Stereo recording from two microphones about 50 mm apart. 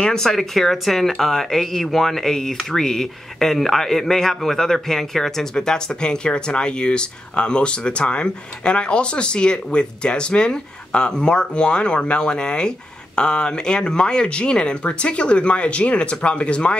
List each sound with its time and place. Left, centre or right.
0.0 s speech: centre